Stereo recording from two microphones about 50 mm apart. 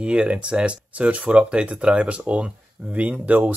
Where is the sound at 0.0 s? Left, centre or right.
Right.